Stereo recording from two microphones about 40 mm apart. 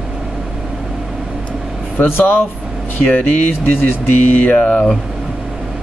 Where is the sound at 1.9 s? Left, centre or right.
Left.